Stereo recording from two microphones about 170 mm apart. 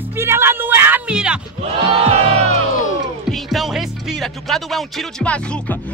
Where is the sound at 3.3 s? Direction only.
Centre (ahead or behind).